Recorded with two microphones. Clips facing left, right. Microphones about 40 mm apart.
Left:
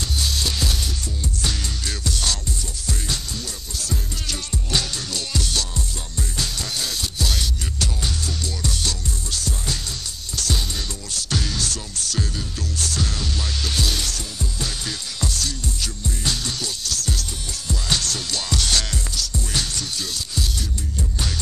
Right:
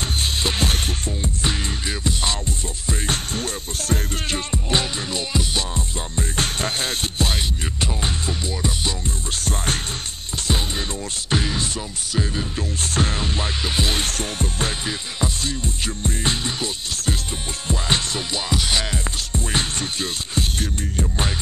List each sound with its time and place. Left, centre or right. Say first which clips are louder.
0.0 s music: right 2 dB; right
1.4 s music: right 2 dB; right
3.1 s music: right 4 dB; right
9.3 s music: right 4 dB; right
10.3 s music: right 2 dB; right
14.9 s music: right 3 dB; right
19.1 s music: right 1 dB; right